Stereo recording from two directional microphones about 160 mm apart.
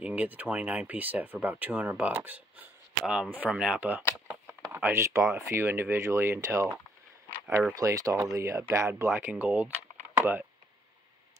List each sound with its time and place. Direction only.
0.0 s speech: 10° right (ahead or behind)
7.7 s speech: 20° right (ahead or behind)
10.1 s a sound: 15° right (ahead or behind)